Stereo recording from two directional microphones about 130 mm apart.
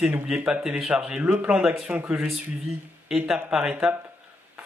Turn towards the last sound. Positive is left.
turn(degrees=-5)  # may be behind; listen again after turning